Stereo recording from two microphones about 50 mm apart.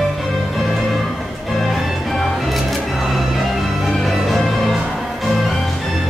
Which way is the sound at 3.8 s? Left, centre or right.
Centre.